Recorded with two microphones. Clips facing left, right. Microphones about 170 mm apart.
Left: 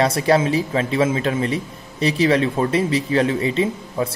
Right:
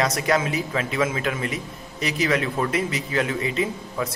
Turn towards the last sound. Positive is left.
turn(degrees=30)  # may be behind; listen again after turning